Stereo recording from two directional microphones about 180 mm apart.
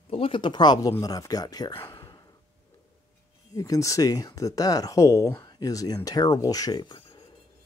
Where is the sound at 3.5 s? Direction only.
20° left (ahead or behind).